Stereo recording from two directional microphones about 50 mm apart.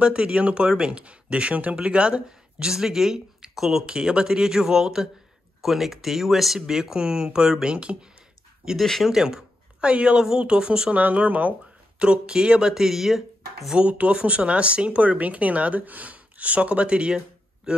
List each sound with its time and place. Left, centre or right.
0.0 s speech: centre
5.6 s speech: centre; by 8.0 s right
8.7 s speech: centre
9.1 s a woman's voice: centre
10.9 s speech: right
12.0 s speech: centre
13.7 s speech: right